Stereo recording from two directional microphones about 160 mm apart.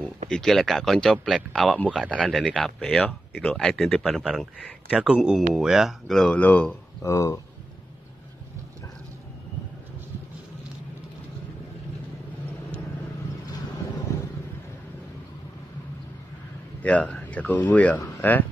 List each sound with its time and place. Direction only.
0.3 s speech: 5° left (ahead or behind)
7.0 s speech: 20° left (ahead or behind)
14.1 s vehicle: 20° left (ahead or behind)
16.8 s speech: 10° left (ahead or behind)